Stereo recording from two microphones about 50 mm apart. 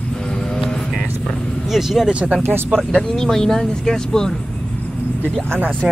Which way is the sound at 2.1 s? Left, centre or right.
Right.